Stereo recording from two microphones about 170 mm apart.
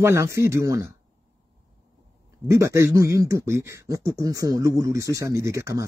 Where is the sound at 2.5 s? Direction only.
15° right (ahead or behind).